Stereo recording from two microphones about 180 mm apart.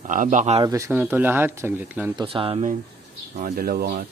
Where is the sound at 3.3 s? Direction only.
50° right (ahead or behind).